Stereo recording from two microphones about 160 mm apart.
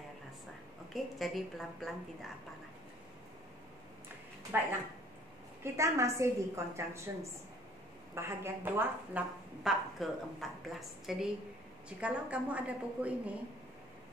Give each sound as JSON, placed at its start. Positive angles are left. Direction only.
{"t": 0.9, "sound": "a woman's voice", "side_deg": 0}
{"t": 4.5, "sound": "a woman's voice", "side_deg": -15}
{"t": 8.1, "sound": "a woman's voice", "side_deg": -15}